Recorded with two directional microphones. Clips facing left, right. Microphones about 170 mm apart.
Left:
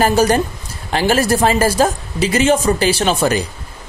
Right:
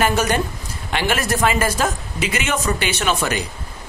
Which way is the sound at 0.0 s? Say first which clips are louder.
Left 5 dB; 35° left (ahead or behind).